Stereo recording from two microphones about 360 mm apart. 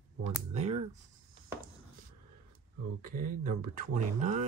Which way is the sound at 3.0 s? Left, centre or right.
Right.